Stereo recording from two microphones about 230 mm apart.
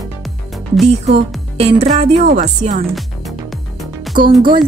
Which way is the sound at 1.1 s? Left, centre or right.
Right.